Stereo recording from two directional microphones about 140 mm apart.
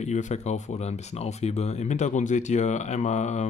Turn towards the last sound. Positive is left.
turn(degrees=55)  # may be behind; listen again after turning